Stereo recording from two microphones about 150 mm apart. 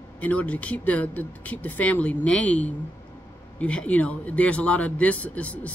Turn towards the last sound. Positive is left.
turn(degrees=10)  # may be behind; listen again after turning